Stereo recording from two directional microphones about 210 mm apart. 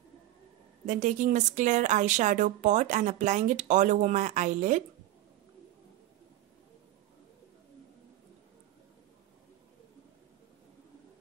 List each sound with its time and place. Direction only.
0.8 s speech: 35° right (ahead or behind)